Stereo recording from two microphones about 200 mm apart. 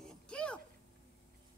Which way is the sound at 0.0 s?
5° left (ahead or behind).